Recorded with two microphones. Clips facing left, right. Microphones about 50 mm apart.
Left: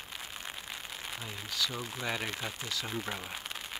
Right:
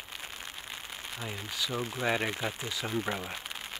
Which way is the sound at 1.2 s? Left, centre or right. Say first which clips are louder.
Right 1 dB; centre.